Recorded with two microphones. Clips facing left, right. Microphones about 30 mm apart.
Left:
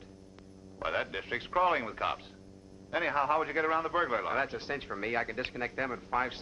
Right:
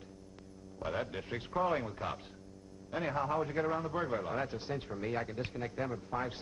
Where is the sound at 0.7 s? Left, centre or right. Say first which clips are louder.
Left 4 dB; left.